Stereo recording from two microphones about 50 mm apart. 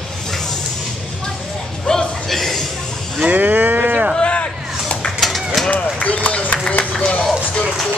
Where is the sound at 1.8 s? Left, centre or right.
Centre.